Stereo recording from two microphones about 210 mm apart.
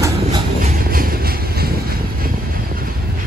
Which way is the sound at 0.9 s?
45° right (ahead or behind).